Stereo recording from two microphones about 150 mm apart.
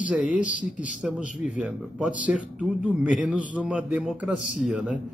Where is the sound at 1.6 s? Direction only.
5° right (ahead or behind).